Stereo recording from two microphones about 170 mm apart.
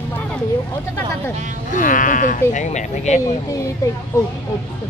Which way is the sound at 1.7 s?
50° left (ahead or behind).